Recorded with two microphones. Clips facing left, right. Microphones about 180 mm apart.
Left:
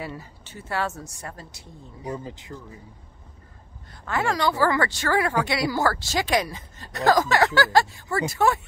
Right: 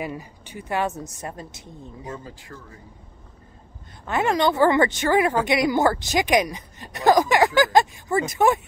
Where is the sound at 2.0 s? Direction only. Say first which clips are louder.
Left 5 dB; 20° left (ahead or behind).